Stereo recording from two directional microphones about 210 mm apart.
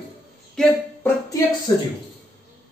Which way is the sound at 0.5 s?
10° left (ahead or behind).